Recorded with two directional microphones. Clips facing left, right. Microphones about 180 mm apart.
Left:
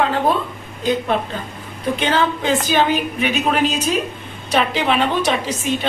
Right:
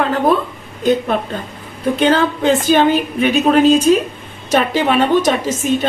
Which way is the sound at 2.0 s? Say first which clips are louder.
Right 5 dB; 40° right (ahead or behind).